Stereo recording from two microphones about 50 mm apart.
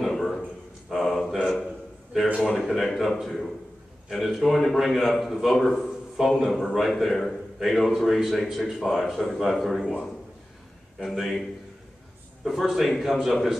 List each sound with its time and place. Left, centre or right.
0.0 s a sound: centre
0.8 s a man's voice: centre
2.5 s a man's voice: centre
11.1 s a man's voice: centre
12.4 s a man's voice: centre